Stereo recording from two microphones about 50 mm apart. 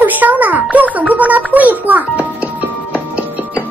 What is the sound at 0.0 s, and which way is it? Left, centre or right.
Music, right.